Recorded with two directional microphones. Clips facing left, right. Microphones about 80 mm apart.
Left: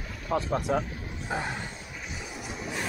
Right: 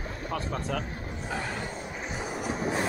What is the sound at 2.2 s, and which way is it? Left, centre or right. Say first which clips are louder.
Music: right 8 dB; right.